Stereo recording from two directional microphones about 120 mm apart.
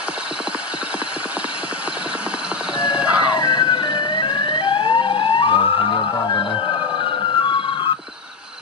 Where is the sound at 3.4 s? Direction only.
35° left (ahead or behind).